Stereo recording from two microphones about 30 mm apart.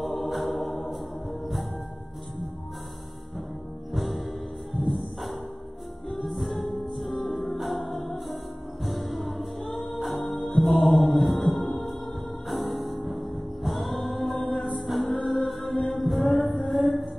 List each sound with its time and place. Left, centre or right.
0.0 s music: centre
3.9 s music: centre